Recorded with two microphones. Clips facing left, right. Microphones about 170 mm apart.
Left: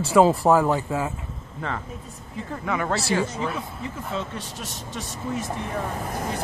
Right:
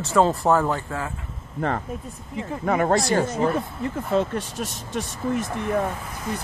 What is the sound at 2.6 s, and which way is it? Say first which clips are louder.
Speech: right 5 dB; 45° right (ahead or behind).